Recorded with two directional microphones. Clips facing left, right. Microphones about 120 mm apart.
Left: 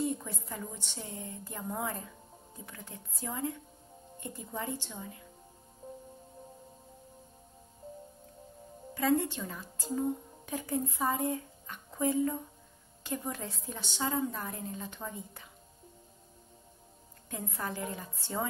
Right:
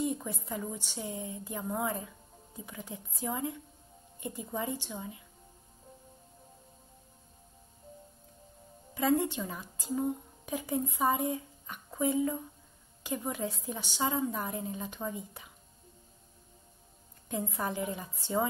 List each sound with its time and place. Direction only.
0.0 s a woman's voice: 15° right (ahead or behind)
8.9 s a woman's voice: 15° right (ahead or behind)
17.3 s a woman's voice: 15° right (ahead or behind)